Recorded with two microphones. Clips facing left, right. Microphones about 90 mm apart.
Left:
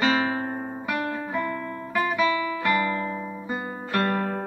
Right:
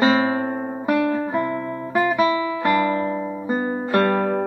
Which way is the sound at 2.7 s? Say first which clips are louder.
Right 6 dB; 35° right (ahead or behind).